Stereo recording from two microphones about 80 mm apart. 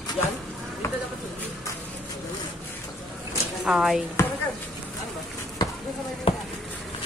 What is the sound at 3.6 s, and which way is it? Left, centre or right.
Speech, centre.